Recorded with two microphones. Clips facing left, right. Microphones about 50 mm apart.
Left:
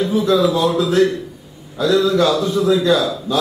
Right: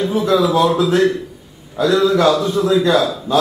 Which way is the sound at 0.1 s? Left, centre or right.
Right.